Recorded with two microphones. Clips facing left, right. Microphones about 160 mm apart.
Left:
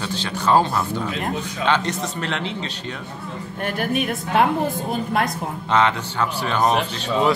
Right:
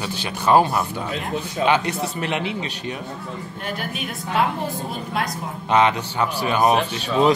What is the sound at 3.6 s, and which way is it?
Speech, 55° left (ahead or behind).